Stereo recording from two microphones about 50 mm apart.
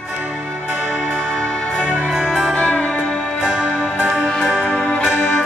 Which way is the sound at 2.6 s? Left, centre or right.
Left.